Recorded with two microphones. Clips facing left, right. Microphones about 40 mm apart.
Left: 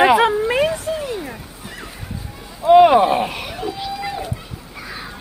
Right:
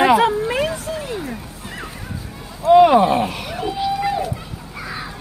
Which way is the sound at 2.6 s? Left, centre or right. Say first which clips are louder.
Left 1 dB; centre.